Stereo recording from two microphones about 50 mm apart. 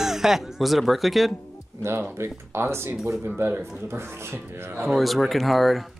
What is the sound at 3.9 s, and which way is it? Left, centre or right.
Speech, right.